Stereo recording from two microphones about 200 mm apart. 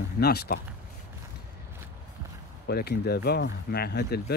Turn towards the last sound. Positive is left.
turn(degrees=50)  # may be behind; listen again after turning